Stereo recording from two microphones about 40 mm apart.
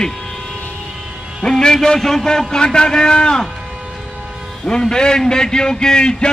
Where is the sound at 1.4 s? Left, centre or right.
Centre.